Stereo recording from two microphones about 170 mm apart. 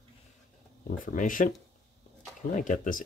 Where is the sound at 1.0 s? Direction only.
50° left (ahead or behind).